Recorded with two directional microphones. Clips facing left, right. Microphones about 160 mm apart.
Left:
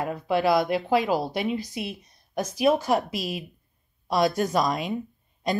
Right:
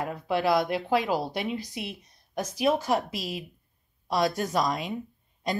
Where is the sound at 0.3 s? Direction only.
5° left (ahead or behind).